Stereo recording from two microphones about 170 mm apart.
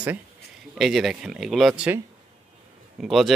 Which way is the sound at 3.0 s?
Centre (ahead or behind).